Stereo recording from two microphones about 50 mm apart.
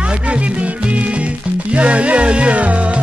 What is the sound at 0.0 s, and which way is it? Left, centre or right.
Music, right.